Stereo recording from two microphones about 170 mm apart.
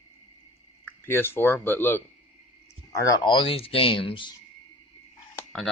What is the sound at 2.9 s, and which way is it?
Speech, 25° left (ahead or behind).